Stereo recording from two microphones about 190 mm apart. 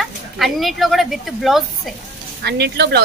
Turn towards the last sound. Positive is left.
turn(degrees=-60)  # may be behind; listen again after turning